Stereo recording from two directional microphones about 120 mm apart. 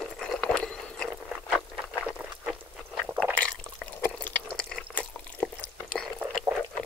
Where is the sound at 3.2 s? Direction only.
10° left (ahead or behind).